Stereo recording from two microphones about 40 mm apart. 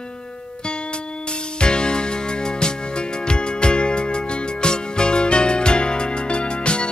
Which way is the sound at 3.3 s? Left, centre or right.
Left.